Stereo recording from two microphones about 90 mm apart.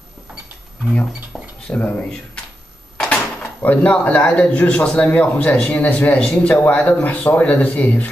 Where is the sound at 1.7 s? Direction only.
15° left (ahead or behind).